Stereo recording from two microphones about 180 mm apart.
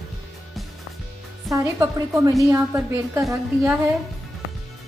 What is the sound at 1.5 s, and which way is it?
Speech, 20° right (ahead or behind).